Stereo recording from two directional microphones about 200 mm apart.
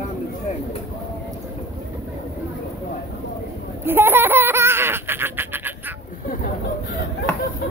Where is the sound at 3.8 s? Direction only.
10° right (ahead or behind).